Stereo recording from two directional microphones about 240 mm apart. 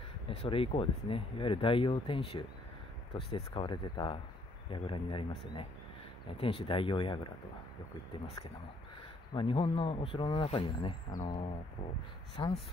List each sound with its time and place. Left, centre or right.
0.3 s speech: left
6.4 s speech: left
9.3 s speech: left